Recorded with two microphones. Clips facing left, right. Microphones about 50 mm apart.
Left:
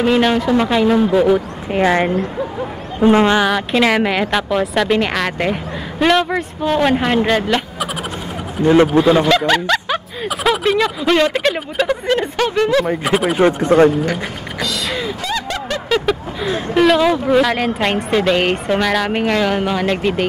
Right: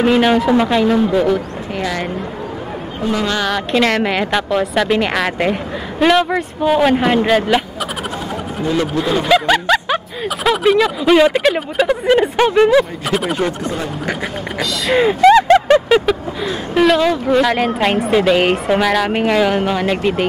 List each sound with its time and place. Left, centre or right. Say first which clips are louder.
0.0 s speech: right 2 dB; centre
1.7 s a woman's voice: left 7 dB; left
3.3 s speech: left 1 dB; centre
8.9 s a woman's voice: left 5 dB; left
9.5 s a sound: right 2 dB; centre
10.2 s speech: right 2 dB; centre
13.0 s speech: left 2 dB; centre
13.4 s a woman's voice: left 6 dB; left
15.3 s a sound: right 12 dB; right
16.1 s speech: right 1 dB; centre